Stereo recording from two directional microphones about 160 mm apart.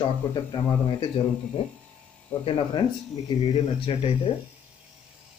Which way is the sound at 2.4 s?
30° left (ahead or behind).